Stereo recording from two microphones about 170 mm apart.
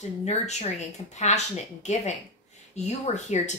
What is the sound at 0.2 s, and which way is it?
A woman's voice, 40° left (ahead or behind).